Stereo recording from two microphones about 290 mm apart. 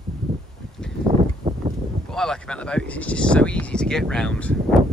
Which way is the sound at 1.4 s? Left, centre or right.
Centre.